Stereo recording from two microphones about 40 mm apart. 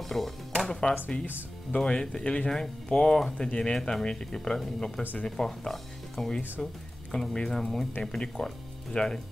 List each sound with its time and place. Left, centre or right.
0.0 s music: centre
0.7 s music: left
1.9 s speech: left
6.6 s music: centre
7.3 s speech: centre